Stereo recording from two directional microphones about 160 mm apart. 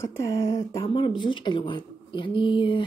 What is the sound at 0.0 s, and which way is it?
Speech, 20° left (ahead or behind).